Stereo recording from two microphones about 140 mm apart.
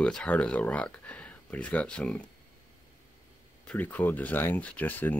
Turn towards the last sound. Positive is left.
turn(degrees=10)  # may be behind; listen again after turning